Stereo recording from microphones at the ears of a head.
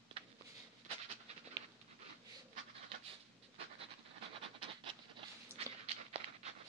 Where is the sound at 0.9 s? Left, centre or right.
Right.